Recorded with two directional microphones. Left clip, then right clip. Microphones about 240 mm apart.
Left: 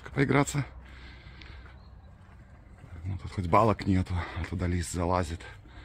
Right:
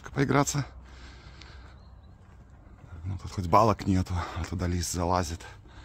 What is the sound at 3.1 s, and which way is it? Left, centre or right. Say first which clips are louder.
Speech: right 2 dB; centre.